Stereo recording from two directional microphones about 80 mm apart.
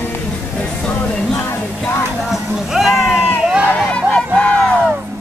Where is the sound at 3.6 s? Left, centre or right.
Centre.